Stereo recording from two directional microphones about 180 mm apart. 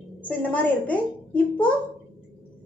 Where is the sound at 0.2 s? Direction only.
10° left (ahead or behind).